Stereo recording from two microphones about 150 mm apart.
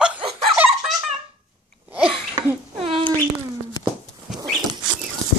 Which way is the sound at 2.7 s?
35° right (ahead or behind).